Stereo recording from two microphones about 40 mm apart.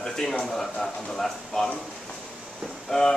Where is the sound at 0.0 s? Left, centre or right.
Centre.